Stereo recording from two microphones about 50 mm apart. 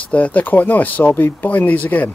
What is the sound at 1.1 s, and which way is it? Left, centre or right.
Speech, left.